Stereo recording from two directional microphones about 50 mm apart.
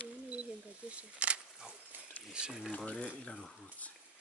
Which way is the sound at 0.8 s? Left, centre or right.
Right.